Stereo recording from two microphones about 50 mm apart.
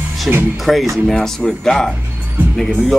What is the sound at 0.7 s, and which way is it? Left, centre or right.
Music, centre.